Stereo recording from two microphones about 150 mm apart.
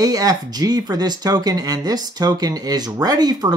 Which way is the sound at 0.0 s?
25° right (ahead or behind).